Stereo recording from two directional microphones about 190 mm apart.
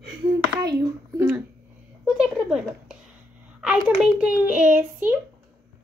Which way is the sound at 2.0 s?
Centre (ahead or behind).